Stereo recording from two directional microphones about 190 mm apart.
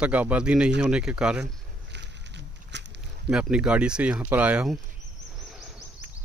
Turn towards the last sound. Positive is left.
turn(degrees=0)  # may be behind; listen again after turning